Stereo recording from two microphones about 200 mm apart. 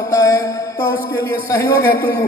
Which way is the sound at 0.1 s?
15° left (ahead or behind).